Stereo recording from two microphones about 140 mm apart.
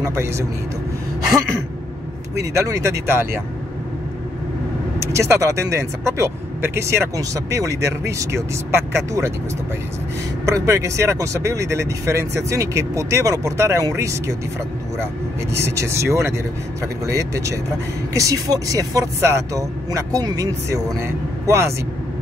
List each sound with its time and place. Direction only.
0.0 s speech: 20° right (ahead or behind)
2.3 s speech: 20° right (ahead or behind)
5.0 s speech: 20° right (ahead or behind)
10.4 s speech: 20° right (ahead or behind)
15.5 s speech: 20° right (ahead or behind)